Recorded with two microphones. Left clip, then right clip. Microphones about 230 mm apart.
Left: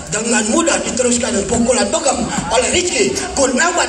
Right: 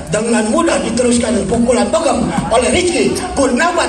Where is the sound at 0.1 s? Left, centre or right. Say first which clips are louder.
Right 2 dB; left.